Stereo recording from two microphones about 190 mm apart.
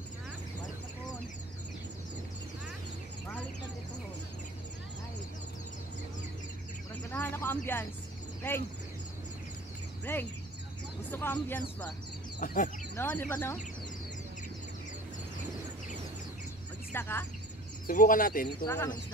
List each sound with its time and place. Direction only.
7.1 s a sound: 10° left (ahead or behind)
8.4 s speech: 10° left (ahead or behind)
10.1 s speech: 10° left (ahead or behind)
12.4 s speech: 45° left (ahead or behind)
12.9 s speech: 10° left (ahead or behind)
16.9 s speech: 10° left (ahead or behind)
17.8 s speech: 45° left (ahead or behind)
18.6 s speech: 15° left (ahead or behind)